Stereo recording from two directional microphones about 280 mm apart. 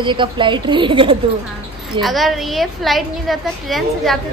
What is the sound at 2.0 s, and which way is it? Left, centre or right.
A woman's voice, centre.